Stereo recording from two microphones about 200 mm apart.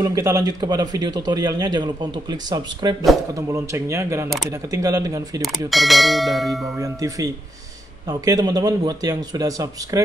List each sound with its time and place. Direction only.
0.0 s a man's voice: 15° right (ahead or behind)
5.4 s bell: centre (ahead or behind)
6.8 s a man's voice: 15° right (ahead or behind)